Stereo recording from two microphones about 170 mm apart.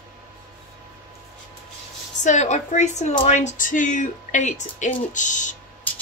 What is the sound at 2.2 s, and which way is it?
A woman's voice, 45° left (ahead or behind).